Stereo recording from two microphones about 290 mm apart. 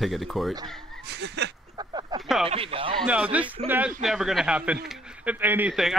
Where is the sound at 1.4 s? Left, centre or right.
Right.